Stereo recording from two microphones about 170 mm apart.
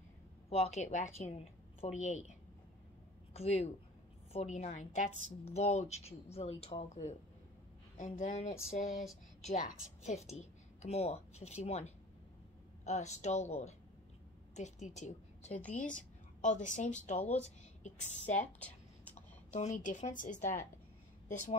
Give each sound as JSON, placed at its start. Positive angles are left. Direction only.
{"t": 0.5, "sound": "a woman's voice", "side_deg": 40}
{"t": 0.8, "sound": "speech", "side_deg": 50}
{"t": 1.2, "sound": "a woman's voice", "side_deg": 35}
{"t": 3.3, "sound": "a woman's voice", "side_deg": 40}
{"t": 19.5, "sound": "a woman's voice", "side_deg": 45}